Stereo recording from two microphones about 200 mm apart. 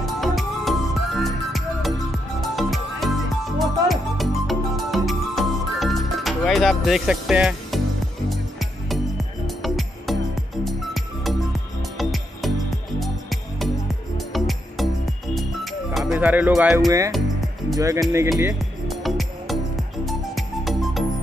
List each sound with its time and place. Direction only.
0.0 s music: centre (ahead or behind)
17.7 s speech: 15° right (ahead or behind)
18.4 s music: 5° right (ahead or behind)